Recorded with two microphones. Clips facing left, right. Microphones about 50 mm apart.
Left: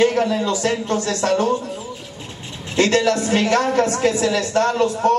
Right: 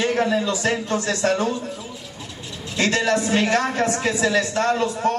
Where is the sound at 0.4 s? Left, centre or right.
Left.